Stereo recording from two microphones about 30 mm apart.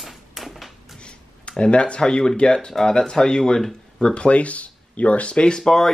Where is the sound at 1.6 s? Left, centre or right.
Left.